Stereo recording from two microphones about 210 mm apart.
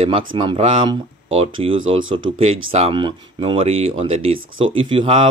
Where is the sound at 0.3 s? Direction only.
25° right (ahead or behind).